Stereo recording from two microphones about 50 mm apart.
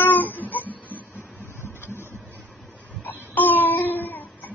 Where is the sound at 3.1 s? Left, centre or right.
Left.